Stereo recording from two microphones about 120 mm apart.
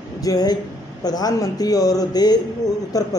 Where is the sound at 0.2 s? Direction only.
30° left (ahead or behind).